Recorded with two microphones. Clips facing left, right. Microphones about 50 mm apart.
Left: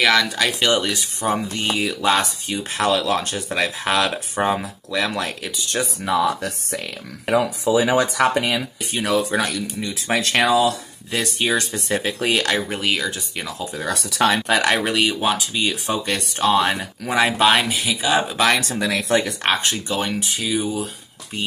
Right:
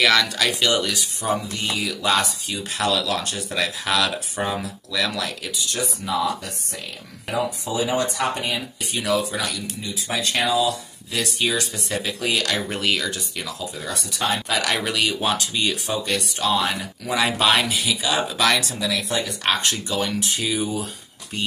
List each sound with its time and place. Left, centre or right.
0.0 s speech: centre
0.6 s speech: left
7.2 s speech: left
8.9 s speech: left
11.1 s speech: left
12.6 s speech: centre
13.8 s speech: left
14.5 s speech: left
15.1 s speech: centre
15.7 s speech: left
18.6 s speech: left
19.4 s speech: left
20.2 s speech: centre